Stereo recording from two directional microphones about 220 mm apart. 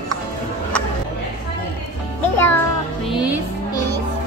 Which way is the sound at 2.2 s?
10° left (ahead or behind).